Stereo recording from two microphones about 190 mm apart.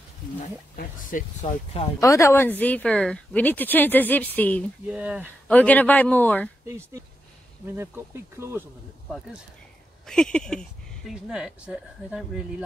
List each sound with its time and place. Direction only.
0.4 s speech: 40° left (ahead or behind)
2.0 s speech: 15° left (ahead or behind)
4.8 s speech: 5° right (ahead or behind)
5.5 s speech: 10° left (ahead or behind)
6.7 s speech: 15° right (ahead or behind)
10.0 s speech: 5° left (ahead or behind)